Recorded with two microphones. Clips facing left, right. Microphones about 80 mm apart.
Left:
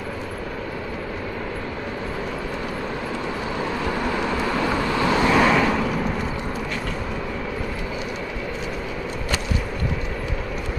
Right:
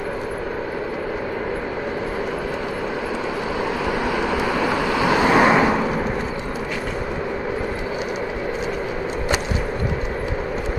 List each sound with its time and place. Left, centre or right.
3.8 s vehicle: centre